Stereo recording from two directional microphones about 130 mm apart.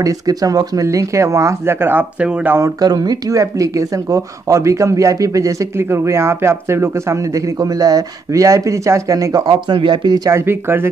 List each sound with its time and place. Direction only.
0.0 s speech: 30° right (ahead or behind); by 2.5 s 10° right (ahead or behind)
2.5 s speech: 25° right (ahead or behind)